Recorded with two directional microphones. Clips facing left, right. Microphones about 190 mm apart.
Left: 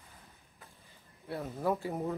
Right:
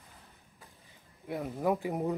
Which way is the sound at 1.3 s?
15° right (ahead or behind).